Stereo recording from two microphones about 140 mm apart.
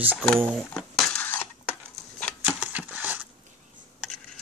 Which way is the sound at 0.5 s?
Centre (ahead or behind).